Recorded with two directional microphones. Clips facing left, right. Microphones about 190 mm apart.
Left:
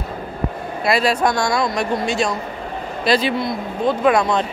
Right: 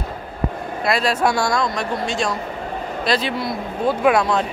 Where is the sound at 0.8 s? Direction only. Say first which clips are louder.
Left 2 dB; centre (ahead or behind).